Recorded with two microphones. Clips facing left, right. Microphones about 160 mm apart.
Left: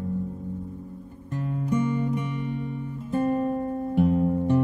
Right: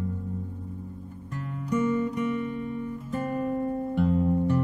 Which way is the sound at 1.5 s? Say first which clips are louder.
Left 1 dB; 25° left (ahead or behind).